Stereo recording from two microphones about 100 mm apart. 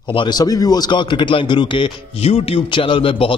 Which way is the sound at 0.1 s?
55° left (ahead or behind).